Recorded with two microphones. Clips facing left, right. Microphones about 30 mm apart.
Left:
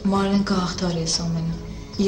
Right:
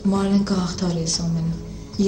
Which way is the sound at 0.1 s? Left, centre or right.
Left.